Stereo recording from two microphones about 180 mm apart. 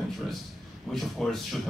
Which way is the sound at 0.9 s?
Centre (ahead or behind).